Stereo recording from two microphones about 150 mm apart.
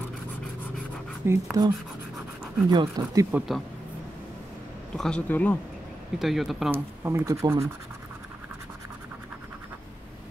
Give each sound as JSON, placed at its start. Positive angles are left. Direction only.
{"t": 1.2, "sound": "speech", "side_deg": -15}
{"t": 2.7, "sound": "speech", "side_deg": -30}
{"t": 3.3, "sound": "speech", "side_deg": -10}
{"t": 4.9, "sound": "speech", "side_deg": 5}
{"t": 6.1, "sound": "speech", "side_deg": 0}
{"t": 6.7, "sound": "speech", "side_deg": -15}